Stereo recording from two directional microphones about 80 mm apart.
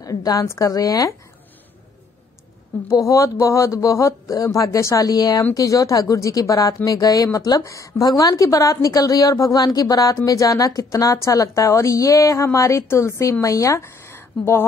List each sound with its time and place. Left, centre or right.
0.0 s speech: left
2.9 s a woman's voice: left